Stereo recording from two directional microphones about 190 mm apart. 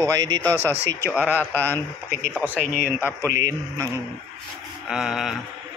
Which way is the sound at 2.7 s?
10° right (ahead or behind).